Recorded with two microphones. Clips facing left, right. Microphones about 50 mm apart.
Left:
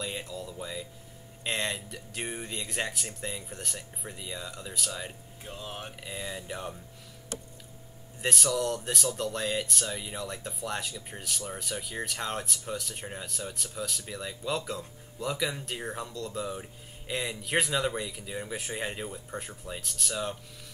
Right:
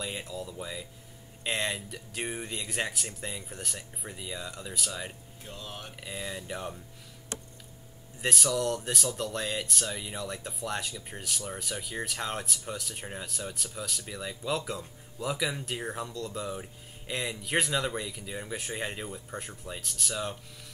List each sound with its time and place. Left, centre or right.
0.0 s speech: centre
5.4 s speech: centre
5.9 s speech: centre
8.2 s speech: centre